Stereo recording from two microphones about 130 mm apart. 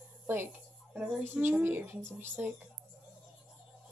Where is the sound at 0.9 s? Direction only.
15° right (ahead or behind).